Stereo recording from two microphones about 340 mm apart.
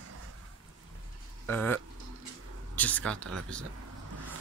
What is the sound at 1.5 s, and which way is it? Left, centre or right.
Speech, centre.